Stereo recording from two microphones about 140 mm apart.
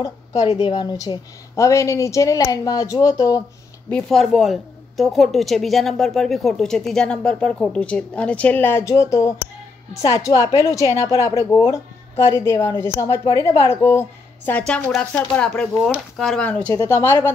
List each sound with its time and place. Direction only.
0.0 s a woman's voice: 25° left (ahead or behind)
3.9 s a woman's voice: centre (ahead or behind); by 17.3 s 20° left (ahead or behind)